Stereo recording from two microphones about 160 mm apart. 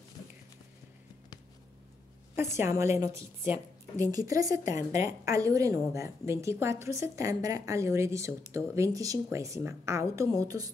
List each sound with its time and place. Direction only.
2.5 s a woman's voice: 15° right (ahead or behind)